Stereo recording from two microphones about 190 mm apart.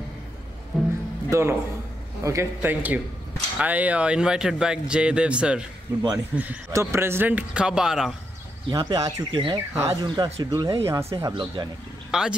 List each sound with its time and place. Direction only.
0.7 s music: centre (ahead or behind)
1.3 s speech: 15° right (ahead or behind)
8.6 s speech: 20° right (ahead or behind)
12.1 s speech: 5° right (ahead or behind)